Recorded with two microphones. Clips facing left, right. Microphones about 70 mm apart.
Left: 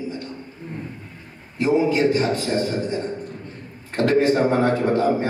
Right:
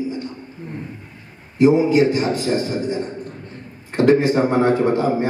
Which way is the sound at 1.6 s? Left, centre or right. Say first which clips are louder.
Right 5 dB; centre.